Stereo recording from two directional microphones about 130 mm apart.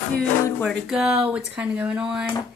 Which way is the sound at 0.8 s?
5° right (ahead or behind).